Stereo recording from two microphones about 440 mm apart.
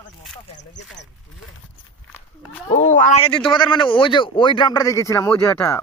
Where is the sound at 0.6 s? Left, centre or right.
Left.